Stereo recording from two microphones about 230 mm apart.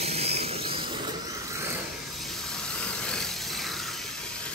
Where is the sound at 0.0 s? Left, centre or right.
Right.